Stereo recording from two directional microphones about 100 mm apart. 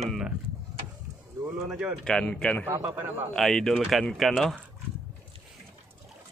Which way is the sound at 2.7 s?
20° right (ahead or behind).